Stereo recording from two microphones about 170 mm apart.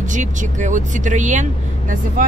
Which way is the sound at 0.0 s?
50° right (ahead or behind).